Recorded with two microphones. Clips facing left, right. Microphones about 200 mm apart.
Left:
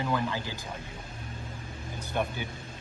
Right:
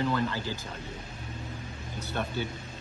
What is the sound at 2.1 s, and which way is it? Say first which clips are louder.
Speech: left 1 dB; 15° left (ahead or behind).